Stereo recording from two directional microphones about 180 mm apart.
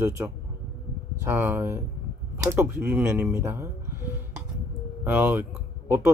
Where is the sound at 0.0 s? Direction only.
15° right (ahead or behind).